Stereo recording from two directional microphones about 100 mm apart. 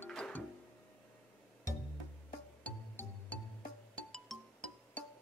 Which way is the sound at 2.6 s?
15° left (ahead or behind).